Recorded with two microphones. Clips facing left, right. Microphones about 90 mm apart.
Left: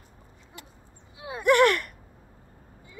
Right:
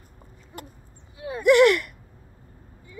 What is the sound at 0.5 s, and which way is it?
Owl, 45° right (ahead or behind).